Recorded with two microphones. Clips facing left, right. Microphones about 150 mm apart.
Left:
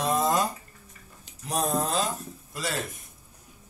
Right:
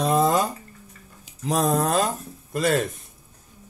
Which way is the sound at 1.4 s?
90° right.